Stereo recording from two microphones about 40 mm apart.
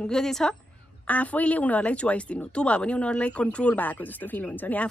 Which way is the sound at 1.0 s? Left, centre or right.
Left.